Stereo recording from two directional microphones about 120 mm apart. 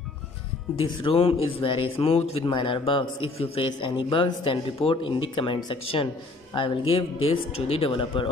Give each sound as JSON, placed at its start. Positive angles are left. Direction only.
{"t": 0.8, "sound": "a man's voice", "side_deg": 50}
{"t": 2.5, "sound": "a man's voice", "side_deg": 45}